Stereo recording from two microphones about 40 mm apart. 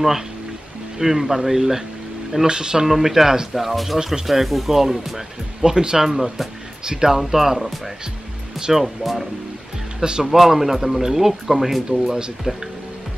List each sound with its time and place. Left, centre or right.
0.9 s speech: centre
2.9 s speech: centre
12.5 s speech: right